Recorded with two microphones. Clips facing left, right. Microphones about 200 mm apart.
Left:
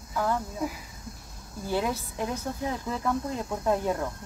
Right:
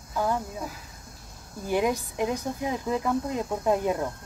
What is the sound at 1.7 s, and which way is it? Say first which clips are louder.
Speech: right 4 dB; 15° right (ahead or behind).